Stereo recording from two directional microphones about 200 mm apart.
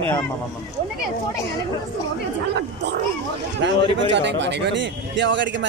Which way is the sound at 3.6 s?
60° right (ahead or behind).